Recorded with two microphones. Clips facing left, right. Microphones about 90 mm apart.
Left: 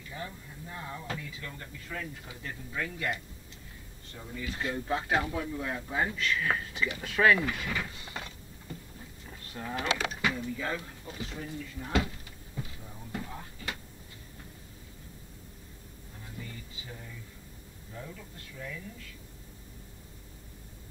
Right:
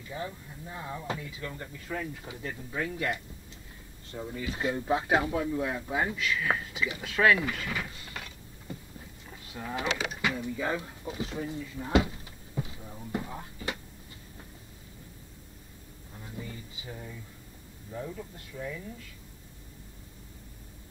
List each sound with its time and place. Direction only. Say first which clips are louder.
0.1 s speech: right 4 dB; 15° right (ahead or behind); by 7.7 s 5° left (ahead or behind)
8.0 s mechanisms: left 1 dB; 25° left (ahead or behind)
9.2 s livestock: even; 5° right (ahead or behind)
9.9 s speech: even; 15° right (ahead or behind)
13.3 s a sound: right 3 dB; 15° right (ahead or behind)
16.3 s a sound: right 3 dB; 15° right (ahead or behind)
17.9 s speech: right 6 dB; 20° right (ahead or behind)